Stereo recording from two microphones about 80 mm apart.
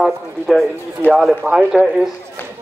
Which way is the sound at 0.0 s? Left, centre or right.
Centre.